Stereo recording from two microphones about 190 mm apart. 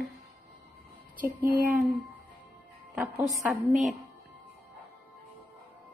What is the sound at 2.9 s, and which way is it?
A woman's voice, 5° right (ahead or behind).